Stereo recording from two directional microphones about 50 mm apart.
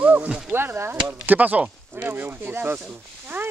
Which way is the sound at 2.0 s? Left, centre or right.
Right.